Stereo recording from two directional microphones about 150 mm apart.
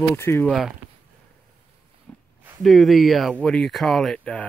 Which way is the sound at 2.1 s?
10° left (ahead or behind).